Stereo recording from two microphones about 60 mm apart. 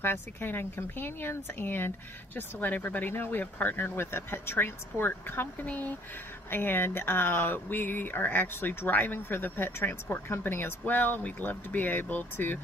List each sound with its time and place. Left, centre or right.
0.0 s speech: left